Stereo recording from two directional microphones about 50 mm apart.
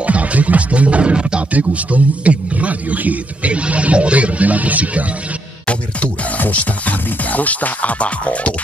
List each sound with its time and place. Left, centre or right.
0.0 s music: right
1.5 s speech: right
5.7 s music: left
6.4 s speech: left